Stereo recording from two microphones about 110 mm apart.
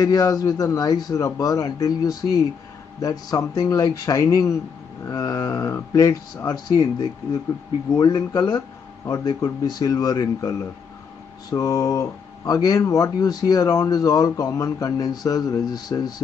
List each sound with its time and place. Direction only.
0.0 s speech: 35° left (ahead or behind)
11.5 s speech: 30° left (ahead or behind)